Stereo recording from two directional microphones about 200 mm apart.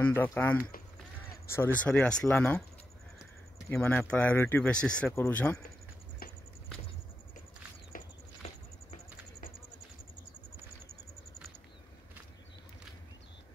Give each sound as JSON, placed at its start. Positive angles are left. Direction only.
{"t": 0.0, "sound": "speech", "side_deg": 10}
{"t": 3.6, "sound": "speech", "side_deg": 10}
{"t": 7.9, "sound": "a sound", "side_deg": 45}